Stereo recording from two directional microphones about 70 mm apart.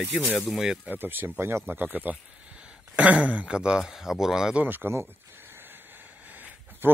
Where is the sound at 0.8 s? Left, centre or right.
Right.